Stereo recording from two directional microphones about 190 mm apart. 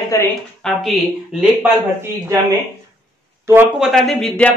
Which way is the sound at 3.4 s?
10° right (ahead or behind).